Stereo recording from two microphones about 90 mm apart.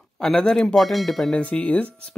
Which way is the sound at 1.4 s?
15° left (ahead or behind).